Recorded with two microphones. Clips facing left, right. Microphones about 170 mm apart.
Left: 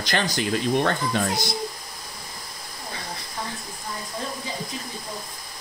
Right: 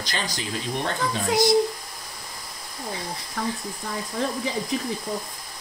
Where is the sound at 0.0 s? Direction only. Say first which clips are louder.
Left 6 dB; 65° left (ahead or behind).